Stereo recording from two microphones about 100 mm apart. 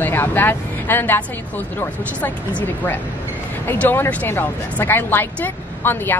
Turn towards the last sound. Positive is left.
turn(degrees=20)  # may be behind; listen again after turning